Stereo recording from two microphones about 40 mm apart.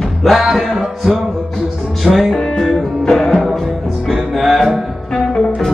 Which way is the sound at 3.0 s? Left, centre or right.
Centre.